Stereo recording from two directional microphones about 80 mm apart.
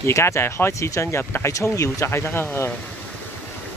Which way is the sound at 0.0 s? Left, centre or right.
Left.